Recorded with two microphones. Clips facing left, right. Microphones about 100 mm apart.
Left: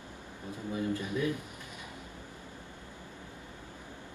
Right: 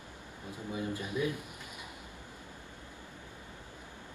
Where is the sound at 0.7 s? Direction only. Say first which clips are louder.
Left 3 dB; 15° right (ahead or behind).